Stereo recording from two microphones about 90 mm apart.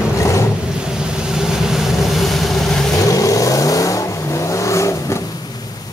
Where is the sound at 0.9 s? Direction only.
10° right (ahead or behind).